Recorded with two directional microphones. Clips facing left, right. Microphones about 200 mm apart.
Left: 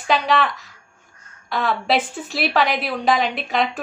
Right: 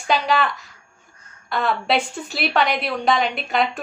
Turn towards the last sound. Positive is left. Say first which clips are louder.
# even
turn(degrees=0)  # may be behind; listen again after turning